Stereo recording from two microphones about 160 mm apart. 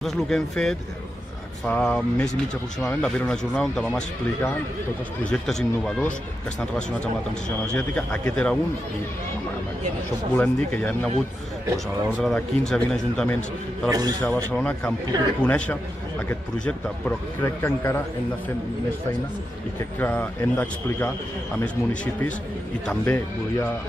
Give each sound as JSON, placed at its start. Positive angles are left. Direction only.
{"t": 0.0, "sound": "a man's voice", "side_deg": 5}
{"t": 7.4, "sound": "speech", "side_deg": 5}
{"t": 10.3, "sound": "a man's voice", "side_deg": 10}
{"t": 12.2, "sound": "speech", "side_deg": 5}
{"t": 13.8, "sound": "a man's voice", "side_deg": -25}
{"t": 14.2, "sound": "a man's voice", "side_deg": 5}
{"t": 20.0, "sound": "a man's voice", "side_deg": 10}